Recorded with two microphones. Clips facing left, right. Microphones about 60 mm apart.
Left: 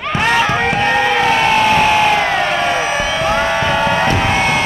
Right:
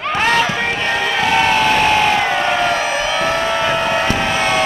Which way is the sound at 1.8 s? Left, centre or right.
Centre.